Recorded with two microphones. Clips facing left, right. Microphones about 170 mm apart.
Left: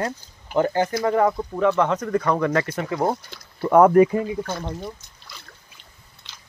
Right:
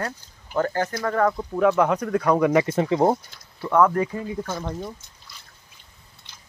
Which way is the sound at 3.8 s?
15° left (ahead or behind).